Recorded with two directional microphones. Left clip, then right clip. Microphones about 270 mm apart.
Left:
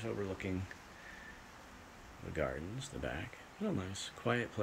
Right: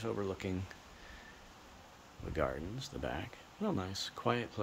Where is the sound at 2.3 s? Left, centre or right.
Centre.